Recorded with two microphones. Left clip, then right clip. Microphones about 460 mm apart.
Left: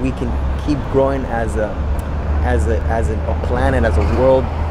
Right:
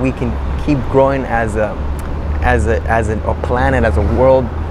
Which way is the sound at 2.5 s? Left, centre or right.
Right.